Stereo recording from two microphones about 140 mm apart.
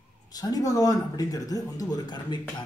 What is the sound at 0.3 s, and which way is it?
A man's voice, 25° left (ahead or behind).